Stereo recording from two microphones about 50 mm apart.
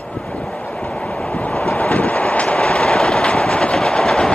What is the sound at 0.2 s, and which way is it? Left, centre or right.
Vehicle, centre.